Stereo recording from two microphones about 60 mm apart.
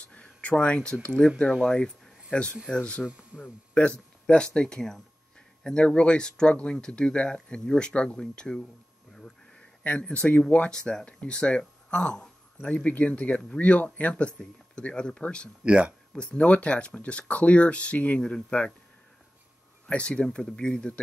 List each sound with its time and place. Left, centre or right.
0.2 s a sound: centre
1.0 s speech: centre
3.1 s speech: centre
4.6 s speech: centre
9.1 s a sound: centre
10.1 s speech: left
15.6 s speech: centre
16.2 s speech: centre
19.9 s speech: left